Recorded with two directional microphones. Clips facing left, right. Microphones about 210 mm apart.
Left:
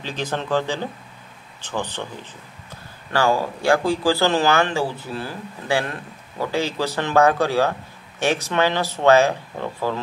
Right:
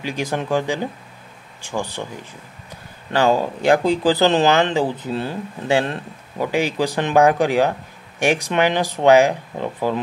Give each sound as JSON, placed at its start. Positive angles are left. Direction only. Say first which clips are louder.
{"t": 0.0, "sound": "speech", "louder": "right 3 dB", "side_deg": -10}
{"t": 3.1, "sound": "speech", "louder": "right 3 dB", "side_deg": -20}